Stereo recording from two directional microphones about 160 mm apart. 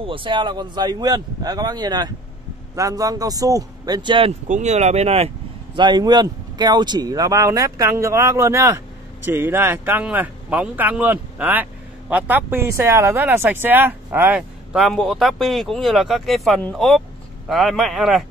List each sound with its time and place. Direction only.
0.0 s speech: 35° right (ahead or behind)
4.5 s speech: 45° right (ahead or behind)
5.8 s speech: 25° right (ahead or behind); by 18.2 s centre (ahead or behind)